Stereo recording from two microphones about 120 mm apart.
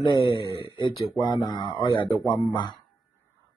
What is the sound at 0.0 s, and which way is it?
Speech, 40° left (ahead or behind).